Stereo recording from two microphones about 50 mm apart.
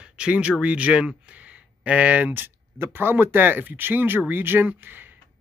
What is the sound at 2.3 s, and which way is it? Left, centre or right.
Speech, right.